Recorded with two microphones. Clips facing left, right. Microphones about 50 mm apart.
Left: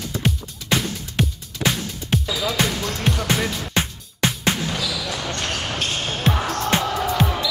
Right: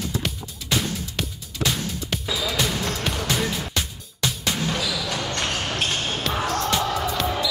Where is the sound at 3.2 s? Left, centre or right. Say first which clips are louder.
Left 2 dB; left.